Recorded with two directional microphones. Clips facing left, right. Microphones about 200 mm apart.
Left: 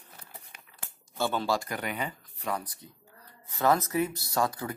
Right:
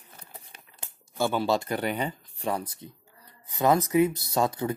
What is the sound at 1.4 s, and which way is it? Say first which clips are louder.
Speech: right 4 dB; 25° right (ahead or behind).